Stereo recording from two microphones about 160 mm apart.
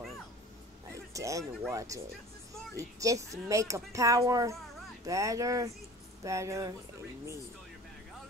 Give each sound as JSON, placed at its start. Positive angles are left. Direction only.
{"t": 0.9, "sound": "a sound", "side_deg": -20}
{"t": 1.7, "sound": "speech", "side_deg": -20}
{"t": 3.0, "sound": "speech", "side_deg": -20}